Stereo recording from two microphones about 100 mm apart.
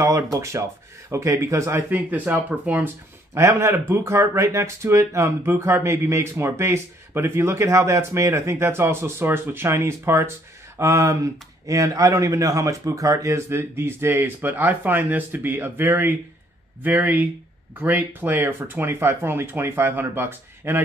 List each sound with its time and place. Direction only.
0.0 s speech: 30° right (ahead or behind)
3.3 s speech: 25° right (ahead or behind)